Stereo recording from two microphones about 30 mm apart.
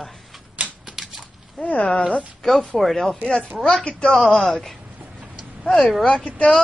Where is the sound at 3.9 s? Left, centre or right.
Left.